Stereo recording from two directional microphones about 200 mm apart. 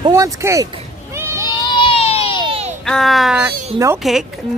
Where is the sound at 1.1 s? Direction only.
15° right (ahead or behind).